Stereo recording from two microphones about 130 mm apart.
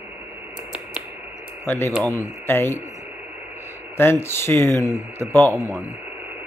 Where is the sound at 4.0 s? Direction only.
20° left (ahead or behind).